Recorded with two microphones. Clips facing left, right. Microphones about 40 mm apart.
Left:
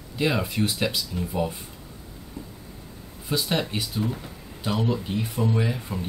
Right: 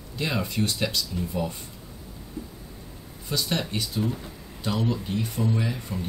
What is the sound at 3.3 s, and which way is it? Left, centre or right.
Speech, centre.